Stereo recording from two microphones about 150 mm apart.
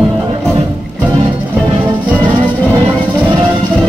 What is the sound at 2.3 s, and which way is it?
Music, 35° right (ahead or behind).